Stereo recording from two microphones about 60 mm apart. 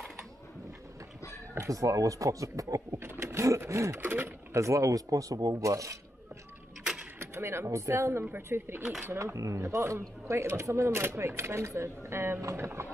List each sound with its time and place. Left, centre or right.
1.7 s speech: right
3.0 s a sound: right
4.0 s speech: right
4.6 s speech: right
7.2 s speech: right
9.2 s speech: right